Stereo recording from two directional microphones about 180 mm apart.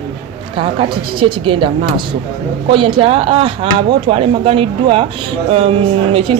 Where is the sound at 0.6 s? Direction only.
30° right (ahead or behind).